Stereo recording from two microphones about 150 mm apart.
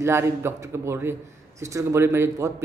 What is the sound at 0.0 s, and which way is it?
Speech, 20° right (ahead or behind).